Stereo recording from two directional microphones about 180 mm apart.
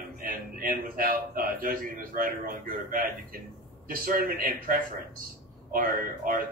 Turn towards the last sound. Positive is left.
turn(degrees=-50)  # may be behind; listen again after turning